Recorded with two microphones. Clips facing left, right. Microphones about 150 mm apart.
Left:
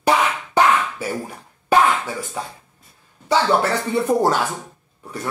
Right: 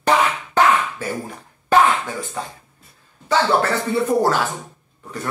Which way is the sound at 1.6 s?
10° left (ahead or behind).